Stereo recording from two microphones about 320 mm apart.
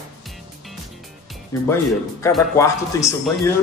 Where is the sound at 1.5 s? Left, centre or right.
Centre.